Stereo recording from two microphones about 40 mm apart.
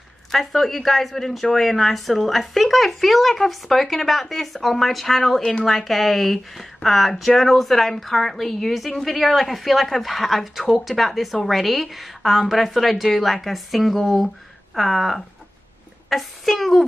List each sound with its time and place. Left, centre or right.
0.3 s a woman's voice: centre
5.4 s a woman's voice: centre
5.7 s a woman's voice: centre